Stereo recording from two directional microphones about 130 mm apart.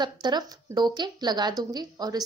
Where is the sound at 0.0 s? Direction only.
35° right (ahead or behind).